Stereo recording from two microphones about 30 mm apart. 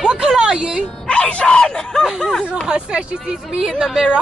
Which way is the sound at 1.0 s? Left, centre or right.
Left.